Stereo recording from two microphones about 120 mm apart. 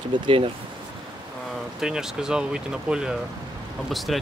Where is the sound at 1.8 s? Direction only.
5° right (ahead or behind).